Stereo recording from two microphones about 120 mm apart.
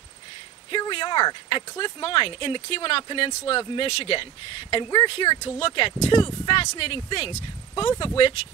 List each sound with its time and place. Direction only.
0.7 s a sound: 45° left (ahead or behind)
1.8 s speech: 50° left (ahead or behind)
6.6 s speech: 60° left (ahead or behind)